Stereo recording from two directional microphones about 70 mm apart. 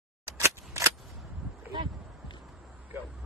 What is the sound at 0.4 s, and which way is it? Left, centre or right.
Scissors, right.